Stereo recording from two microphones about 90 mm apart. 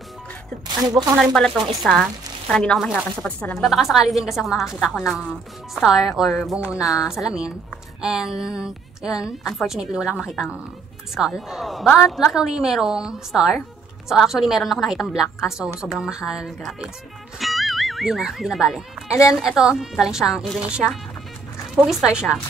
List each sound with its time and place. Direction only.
0.7 s speech: 45° right (ahead or behind)
1.1 s a woman's voice: 5° right (ahead or behind); by 3.5 s 15° left (ahead or behind)
3.6 s a woman's voice: 5° right (ahead or behind)
6.6 s a woman's voice: 10° right (ahead or behind)
17.4 s music: centre (ahead or behind)
19.3 s a woman's voice: 5° right (ahead or behind)